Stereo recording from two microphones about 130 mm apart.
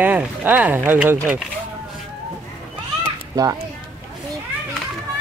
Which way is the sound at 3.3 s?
25° right (ahead or behind).